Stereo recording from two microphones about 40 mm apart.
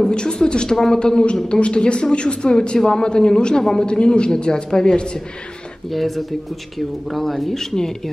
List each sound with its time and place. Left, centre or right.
0.0 s a man's voice: left
5.9 s speech: centre